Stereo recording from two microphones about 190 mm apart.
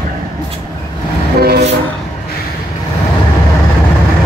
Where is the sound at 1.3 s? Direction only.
55° right (ahead or behind).